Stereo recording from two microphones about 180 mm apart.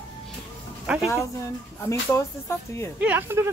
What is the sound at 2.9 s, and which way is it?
Speech, 10° right (ahead or behind).